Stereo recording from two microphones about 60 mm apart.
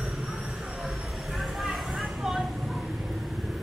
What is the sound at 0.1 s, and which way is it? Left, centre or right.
Vehicle, centre.